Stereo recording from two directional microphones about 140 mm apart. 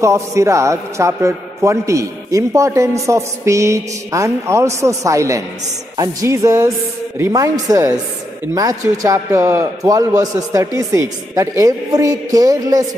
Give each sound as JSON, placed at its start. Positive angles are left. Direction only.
{"t": 0.0, "sound": "a man's voice", "side_deg": -20}